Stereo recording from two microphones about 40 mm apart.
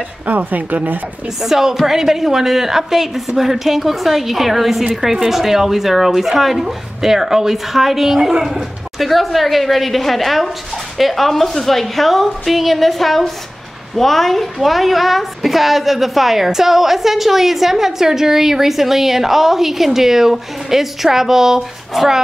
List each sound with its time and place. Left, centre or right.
0.3 s a woman's voice: right
1.4 s a woman's voice: centre